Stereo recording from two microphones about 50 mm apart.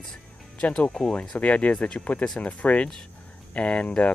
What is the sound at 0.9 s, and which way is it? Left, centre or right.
Speech, centre.